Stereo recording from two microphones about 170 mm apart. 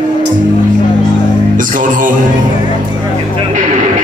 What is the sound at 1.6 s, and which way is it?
Music, 50° right (ahead or behind).